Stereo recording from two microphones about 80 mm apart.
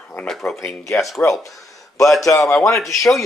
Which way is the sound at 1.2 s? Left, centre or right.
Left.